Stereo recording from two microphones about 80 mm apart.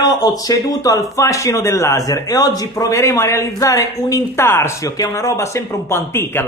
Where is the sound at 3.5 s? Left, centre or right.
Left.